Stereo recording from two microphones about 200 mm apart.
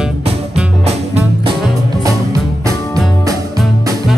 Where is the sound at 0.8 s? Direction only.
30° right (ahead or behind).